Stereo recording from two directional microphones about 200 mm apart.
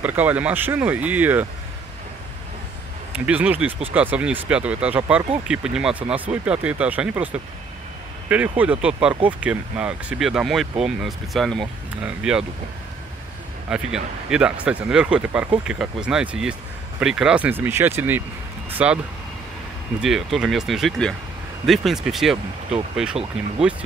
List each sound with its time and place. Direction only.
0.0 s speech: 10° right (ahead or behind)
3.3 s speech: 5° right (ahead or behind)
8.3 s speech: 5° right (ahead or behind)
13.7 s speech: 5° right (ahead or behind)
20.0 s speech: centre (ahead or behind)
23.2 s speech: 30° right (ahead or behind)